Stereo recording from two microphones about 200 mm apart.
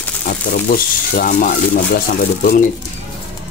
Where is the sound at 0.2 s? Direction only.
45° left (ahead or behind).